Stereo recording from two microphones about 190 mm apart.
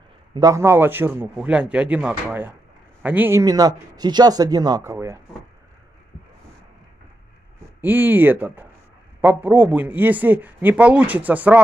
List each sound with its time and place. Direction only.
0.3 s a man's voice: 20° right (ahead or behind)
7.8 s a man's voice: 10° right (ahead or behind)